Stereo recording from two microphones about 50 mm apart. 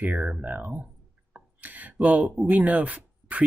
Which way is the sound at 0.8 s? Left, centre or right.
Right.